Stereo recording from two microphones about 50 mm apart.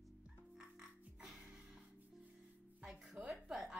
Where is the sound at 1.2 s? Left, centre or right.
Centre.